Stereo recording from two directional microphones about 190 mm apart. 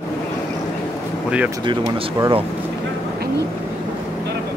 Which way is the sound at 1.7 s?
25° right (ahead or behind).